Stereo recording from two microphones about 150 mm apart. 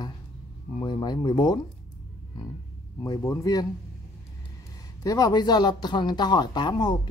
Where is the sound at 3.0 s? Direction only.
25° left (ahead or behind).